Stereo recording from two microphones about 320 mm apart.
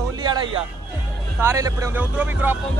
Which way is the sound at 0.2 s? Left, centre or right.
Centre.